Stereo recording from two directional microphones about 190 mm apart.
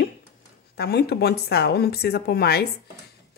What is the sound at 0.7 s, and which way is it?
Speech, 55° left (ahead or behind).